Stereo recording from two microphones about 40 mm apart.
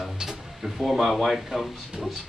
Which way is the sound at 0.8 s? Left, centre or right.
Centre.